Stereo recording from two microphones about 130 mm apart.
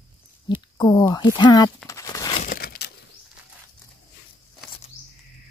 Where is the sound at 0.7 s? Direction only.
30° left (ahead or behind).